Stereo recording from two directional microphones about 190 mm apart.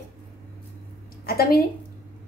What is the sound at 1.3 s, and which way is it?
Speech, 55° left (ahead or behind).